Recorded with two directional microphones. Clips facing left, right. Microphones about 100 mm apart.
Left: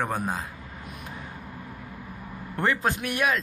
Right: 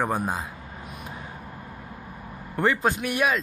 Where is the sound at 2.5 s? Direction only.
5° right (ahead or behind).